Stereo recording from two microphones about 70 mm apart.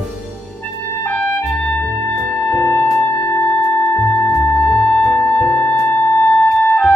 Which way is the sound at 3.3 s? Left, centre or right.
Left.